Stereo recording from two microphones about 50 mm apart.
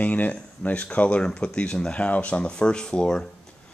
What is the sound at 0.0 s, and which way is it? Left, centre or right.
Speech, left.